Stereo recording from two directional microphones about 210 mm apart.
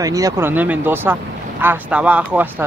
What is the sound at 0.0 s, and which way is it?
Speech, 15° right (ahead or behind).